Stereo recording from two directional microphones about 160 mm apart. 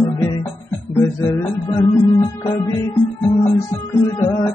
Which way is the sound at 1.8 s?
25° left (ahead or behind).